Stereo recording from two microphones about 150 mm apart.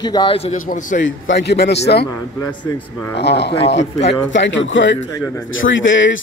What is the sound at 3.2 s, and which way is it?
Speech, 90° left.